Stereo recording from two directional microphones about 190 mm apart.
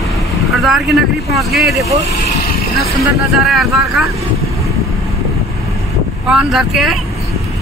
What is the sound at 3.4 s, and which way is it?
Speech, centre (ahead or behind).